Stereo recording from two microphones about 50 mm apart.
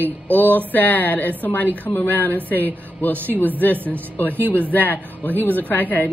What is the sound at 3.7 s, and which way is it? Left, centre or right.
Speech, right.